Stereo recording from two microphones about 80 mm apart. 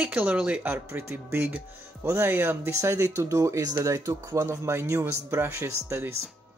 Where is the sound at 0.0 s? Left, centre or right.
Centre.